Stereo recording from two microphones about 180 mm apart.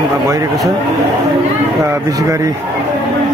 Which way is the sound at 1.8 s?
15° right (ahead or behind).